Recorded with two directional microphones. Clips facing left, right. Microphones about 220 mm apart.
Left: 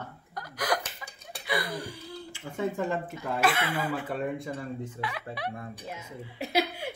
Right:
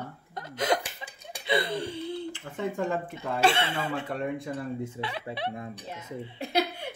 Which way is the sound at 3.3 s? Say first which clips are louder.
Right 2 dB; 25° right (ahead or behind).